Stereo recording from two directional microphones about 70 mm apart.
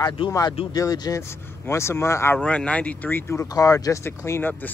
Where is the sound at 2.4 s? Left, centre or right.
Centre; by 3.5 s left.